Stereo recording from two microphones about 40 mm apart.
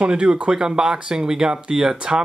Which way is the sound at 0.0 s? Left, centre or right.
Right.